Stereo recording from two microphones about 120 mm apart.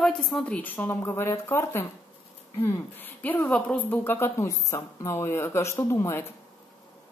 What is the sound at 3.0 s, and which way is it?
A woman's voice, 15° left (ahead or behind).